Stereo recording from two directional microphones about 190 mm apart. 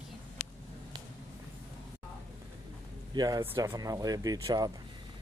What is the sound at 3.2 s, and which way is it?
Speech, 20° right (ahead or behind).